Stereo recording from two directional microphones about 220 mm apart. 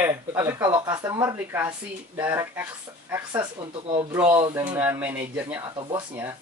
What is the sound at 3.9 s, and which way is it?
Speech, 25° right (ahead or behind).